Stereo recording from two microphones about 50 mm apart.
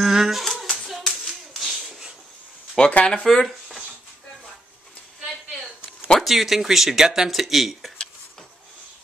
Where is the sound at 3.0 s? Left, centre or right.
Left.